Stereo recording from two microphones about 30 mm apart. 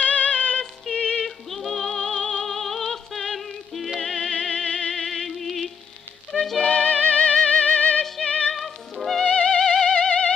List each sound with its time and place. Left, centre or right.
0.0 s music: left
0.9 s music: left
1.2 s music: centre
2.0 s music: left
2.4 s music: centre
4.0 s music: centre
4.9 s music: centre
6.6 s music: left
8.5 s music: centre
9.2 s music: left